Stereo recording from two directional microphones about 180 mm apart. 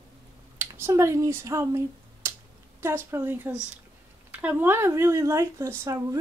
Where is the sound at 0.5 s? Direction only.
15° right (ahead or behind).